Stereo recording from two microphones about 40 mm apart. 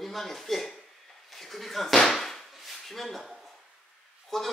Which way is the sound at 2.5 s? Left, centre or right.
Centre.